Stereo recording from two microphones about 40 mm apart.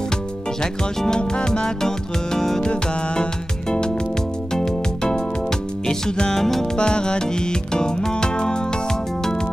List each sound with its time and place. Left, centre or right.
0.6 s speech: centre
4.6 s music: centre
6.4 s speech: centre
6.8 s music: left